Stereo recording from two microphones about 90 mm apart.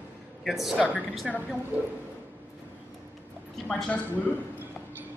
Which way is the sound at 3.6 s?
10° left (ahead or behind).